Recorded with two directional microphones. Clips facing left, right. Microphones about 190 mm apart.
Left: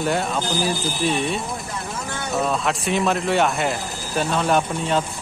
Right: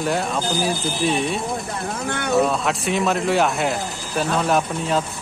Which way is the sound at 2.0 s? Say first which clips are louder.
Right 5 dB; 65° right (ahead or behind).